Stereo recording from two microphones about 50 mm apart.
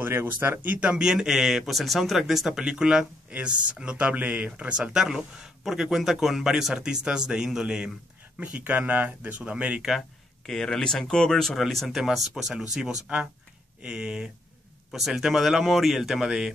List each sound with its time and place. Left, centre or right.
0.0 s speech: right
0.7 s speech: right
9.4 s speech: right
10.4 s speech: centre
12.0 s speech: centre
13.8 s speech: centre
14.9 s speech: centre